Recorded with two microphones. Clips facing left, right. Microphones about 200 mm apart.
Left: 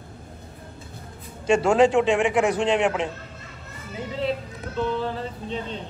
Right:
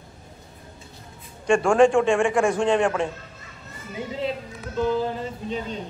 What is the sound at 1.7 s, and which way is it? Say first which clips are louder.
Speech: right 1 dB; 20° left (ahead or behind).